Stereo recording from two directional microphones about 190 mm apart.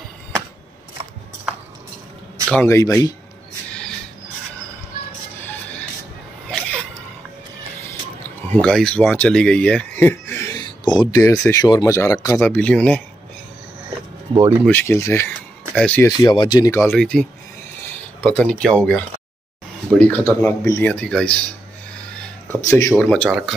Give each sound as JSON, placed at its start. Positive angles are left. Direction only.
{"t": 2.5, "sound": "speech", "side_deg": 15}
{"t": 5.4, "sound": "music", "side_deg": 10}
{"t": 6.5, "sound": "a sound", "side_deg": 5}
{"t": 8.5, "sound": "speech", "side_deg": 5}
{"t": 14.7, "sound": "speech", "side_deg": 10}
{"t": 16.1, "sound": "speech", "side_deg": 20}
{"t": 16.9, "sound": "speech", "side_deg": 5}
{"t": 22.7, "sound": "speech", "side_deg": 15}
{"t": 22.9, "sound": "speech", "side_deg": 5}